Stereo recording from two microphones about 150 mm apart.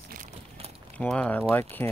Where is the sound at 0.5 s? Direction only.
40° right (ahead or behind).